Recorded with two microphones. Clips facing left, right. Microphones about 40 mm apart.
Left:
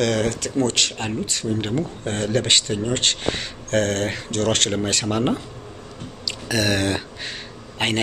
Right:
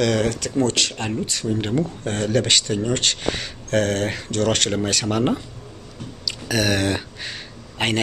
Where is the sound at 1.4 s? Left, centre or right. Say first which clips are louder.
Right 2 dB; centre.